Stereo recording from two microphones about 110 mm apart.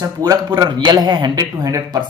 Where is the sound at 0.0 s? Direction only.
40° right (ahead or behind).